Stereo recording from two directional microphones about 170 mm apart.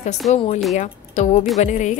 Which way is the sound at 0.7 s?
45° left (ahead or behind).